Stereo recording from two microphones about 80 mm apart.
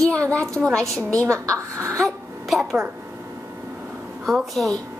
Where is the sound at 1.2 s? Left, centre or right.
Right.